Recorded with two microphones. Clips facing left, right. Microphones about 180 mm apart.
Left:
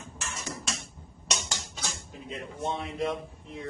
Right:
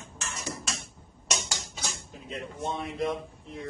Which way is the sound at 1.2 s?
5° right (ahead or behind).